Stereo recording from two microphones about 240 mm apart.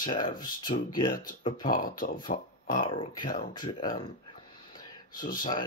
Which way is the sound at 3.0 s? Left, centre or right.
Centre.